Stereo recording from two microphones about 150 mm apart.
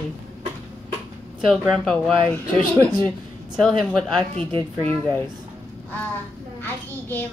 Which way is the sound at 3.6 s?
5° left (ahead or behind).